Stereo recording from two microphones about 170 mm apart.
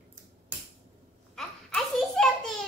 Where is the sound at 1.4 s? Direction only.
Centre (ahead or behind).